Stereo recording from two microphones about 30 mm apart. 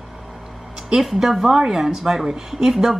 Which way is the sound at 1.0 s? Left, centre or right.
Centre.